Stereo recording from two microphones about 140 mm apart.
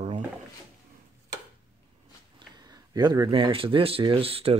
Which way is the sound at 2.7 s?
30° right (ahead or behind).